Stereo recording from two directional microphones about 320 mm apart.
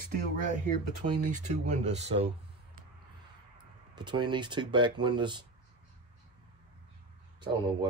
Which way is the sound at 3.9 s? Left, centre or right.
Centre.